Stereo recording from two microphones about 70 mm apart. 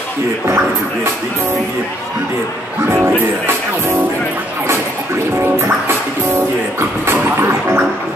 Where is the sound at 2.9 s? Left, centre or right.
Right.